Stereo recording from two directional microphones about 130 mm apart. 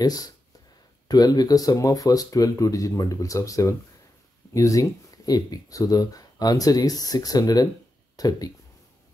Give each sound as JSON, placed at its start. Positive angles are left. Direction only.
{"t": 0.0, "sound": "speech", "side_deg": 30}